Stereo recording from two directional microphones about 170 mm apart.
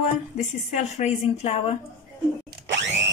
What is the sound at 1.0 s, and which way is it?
Speech, 35° left (ahead or behind).